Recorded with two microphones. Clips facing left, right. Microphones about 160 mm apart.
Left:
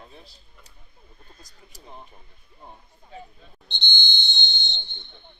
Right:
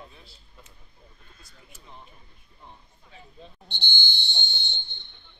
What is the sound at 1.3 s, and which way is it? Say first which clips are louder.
Speech: left 2 dB; 40° left (ahead or behind).